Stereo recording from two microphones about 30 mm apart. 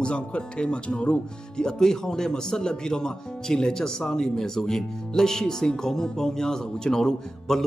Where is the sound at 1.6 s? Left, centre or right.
Left.